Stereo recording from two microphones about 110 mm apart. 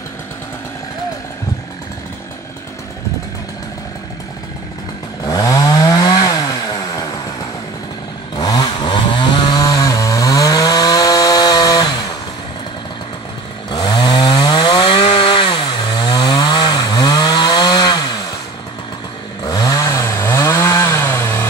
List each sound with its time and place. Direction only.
5.2 s chainsaw: 35° left (ahead or behind)
8.4 s chainsaw: 40° left (ahead or behind)
9.6 s chainsaw: 30° left (ahead or behind)
13.7 s chainsaw: 40° left (ahead or behind)
19.4 s chainsaw: 35° left (ahead or behind)